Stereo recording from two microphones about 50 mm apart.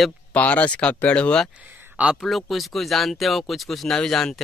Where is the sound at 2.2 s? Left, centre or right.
Centre.